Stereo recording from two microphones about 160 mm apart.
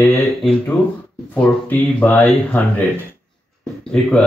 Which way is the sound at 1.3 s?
10° left (ahead or behind).